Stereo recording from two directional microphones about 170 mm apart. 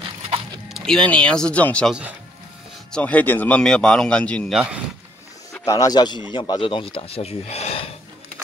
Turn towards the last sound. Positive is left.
turn(degrees=35)  # may be behind; listen again after turning